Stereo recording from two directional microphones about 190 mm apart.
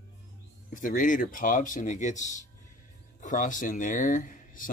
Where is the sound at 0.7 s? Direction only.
45° left (ahead or behind).